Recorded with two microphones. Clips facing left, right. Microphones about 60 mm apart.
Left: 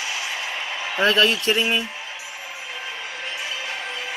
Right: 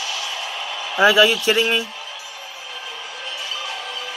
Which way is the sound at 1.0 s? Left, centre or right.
Centre.